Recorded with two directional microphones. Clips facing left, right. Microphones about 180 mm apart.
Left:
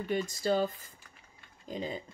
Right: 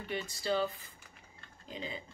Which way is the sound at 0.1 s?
45° left (ahead or behind).